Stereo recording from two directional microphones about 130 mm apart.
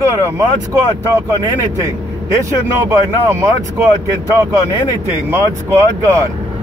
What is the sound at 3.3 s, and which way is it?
Speech, 15° right (ahead or behind).